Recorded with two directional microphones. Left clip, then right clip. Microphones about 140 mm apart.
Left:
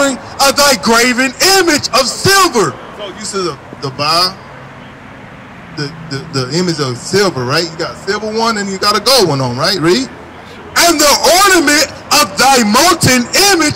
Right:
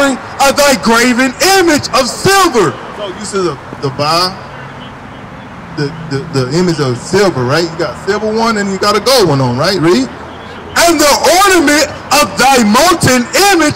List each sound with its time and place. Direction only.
0.0 s speech: 20° left (ahead or behind)
5.8 s speech: 20° left (ahead or behind)